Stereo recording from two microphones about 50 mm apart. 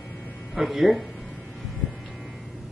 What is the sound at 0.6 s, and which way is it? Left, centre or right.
Speech, centre.